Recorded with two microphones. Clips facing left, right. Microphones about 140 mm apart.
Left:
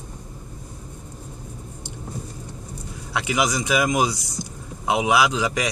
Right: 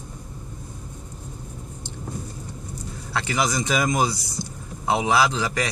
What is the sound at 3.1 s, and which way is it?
Speech, 15° left (ahead or behind).